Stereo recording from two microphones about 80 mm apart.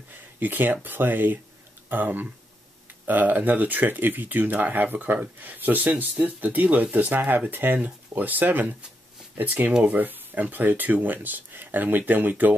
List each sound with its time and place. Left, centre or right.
0.4 s speech: right